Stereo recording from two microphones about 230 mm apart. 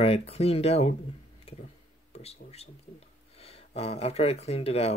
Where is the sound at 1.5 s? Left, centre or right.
Left.